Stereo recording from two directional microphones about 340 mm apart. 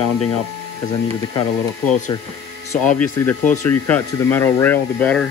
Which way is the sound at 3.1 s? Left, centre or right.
Centre.